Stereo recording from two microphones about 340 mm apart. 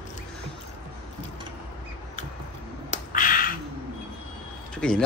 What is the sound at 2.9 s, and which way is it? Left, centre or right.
Finger snapping, left.